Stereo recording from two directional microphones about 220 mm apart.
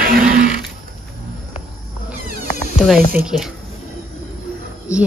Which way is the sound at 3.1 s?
5° right (ahead or behind).